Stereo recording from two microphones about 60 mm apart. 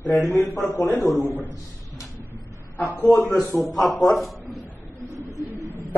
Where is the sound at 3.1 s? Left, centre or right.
Left.